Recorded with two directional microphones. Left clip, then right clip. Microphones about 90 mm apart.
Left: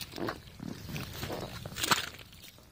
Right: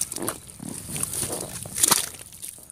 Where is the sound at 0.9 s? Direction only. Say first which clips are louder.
Right 8 dB; 40° right (ahead or behind).